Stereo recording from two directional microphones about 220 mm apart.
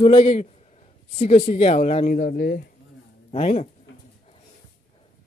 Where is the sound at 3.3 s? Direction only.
30° left (ahead or behind).